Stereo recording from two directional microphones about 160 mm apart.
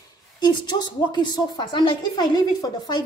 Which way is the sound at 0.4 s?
30° left (ahead or behind).